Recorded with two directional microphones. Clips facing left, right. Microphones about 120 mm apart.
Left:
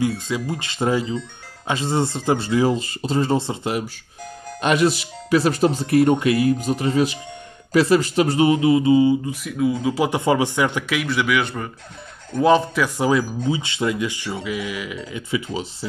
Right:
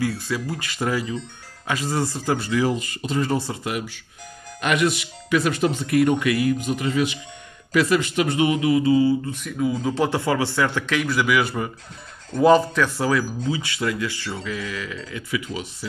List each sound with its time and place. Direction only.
0.0 s speech: 20° left (ahead or behind)
9.3 s speech: 5° left (ahead or behind)
10.0 s speech: 20° left (ahead or behind); by 12.8 s centre (ahead or behind)
12.8 s speech: 15° left (ahead or behind)